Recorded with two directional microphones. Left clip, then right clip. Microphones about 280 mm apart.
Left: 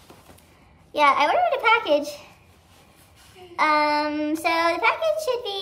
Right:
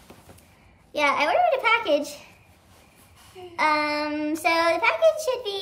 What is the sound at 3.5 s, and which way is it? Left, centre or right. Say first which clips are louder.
Child singing: left 3 dB; centre.